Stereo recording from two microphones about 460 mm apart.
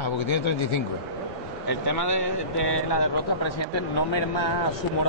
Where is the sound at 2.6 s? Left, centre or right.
Left.